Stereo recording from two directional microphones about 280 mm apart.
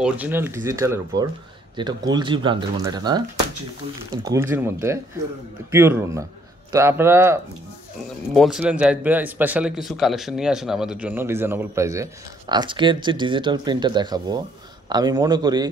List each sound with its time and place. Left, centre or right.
0.0 s speech: centre